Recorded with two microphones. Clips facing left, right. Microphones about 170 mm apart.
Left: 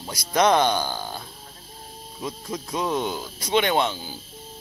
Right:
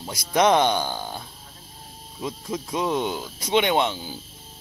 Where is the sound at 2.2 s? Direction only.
10° right (ahead or behind).